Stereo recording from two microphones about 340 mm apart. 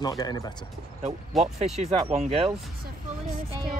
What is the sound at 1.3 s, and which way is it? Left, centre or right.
Speech, centre.